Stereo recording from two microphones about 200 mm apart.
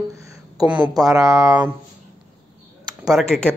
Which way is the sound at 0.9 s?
20° right (ahead or behind).